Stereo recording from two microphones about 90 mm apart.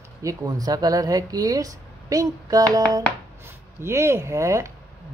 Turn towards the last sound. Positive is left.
turn(degrees=-35)  # may be behind; listen again after turning